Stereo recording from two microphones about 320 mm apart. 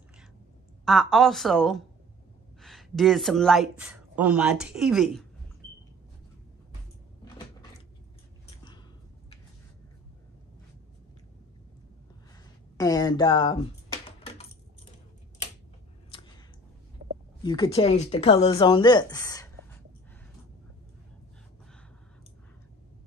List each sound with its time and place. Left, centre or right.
0.8 s a woman's voice: centre
12.7 s speech: centre
16.1 s a sound: centre
17.4 s speech: centre